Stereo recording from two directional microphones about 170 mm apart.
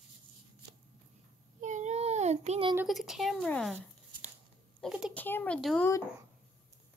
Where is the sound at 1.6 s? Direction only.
45° right (ahead or behind).